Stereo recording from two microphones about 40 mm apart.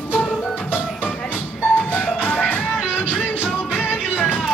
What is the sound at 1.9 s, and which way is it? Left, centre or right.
Music, left.